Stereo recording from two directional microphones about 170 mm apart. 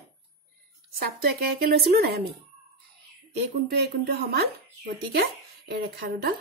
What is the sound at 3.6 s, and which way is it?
Speech, 65° right (ahead or behind).